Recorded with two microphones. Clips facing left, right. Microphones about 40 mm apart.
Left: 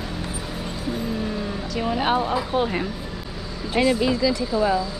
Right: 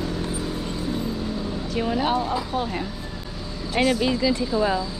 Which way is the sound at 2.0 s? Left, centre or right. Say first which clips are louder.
Left 2 dB; left.